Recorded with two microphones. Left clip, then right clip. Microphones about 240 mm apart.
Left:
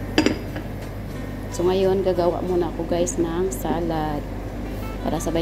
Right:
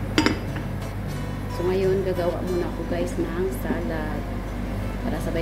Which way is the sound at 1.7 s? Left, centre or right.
Left.